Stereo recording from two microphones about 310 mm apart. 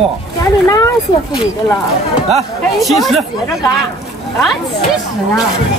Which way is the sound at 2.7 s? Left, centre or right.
Centre.